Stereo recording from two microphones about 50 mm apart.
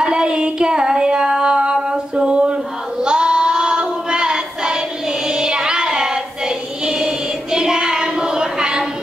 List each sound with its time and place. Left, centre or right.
0.0 s music: centre